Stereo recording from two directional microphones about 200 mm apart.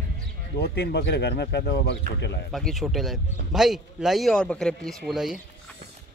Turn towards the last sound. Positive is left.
turn(degrees=0)  # may be behind; listen again after turning